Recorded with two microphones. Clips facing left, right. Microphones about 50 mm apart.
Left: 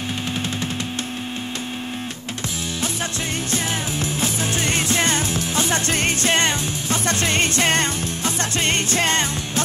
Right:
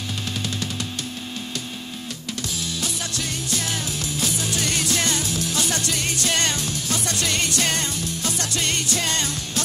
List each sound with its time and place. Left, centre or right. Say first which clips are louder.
3.5 s music: left 3 dB; left